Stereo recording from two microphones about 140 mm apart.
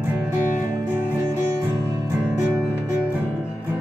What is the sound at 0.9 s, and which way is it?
Music, 15° right (ahead or behind).